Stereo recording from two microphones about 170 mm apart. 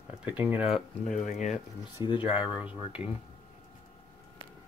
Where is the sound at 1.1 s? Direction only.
45° left (ahead or behind).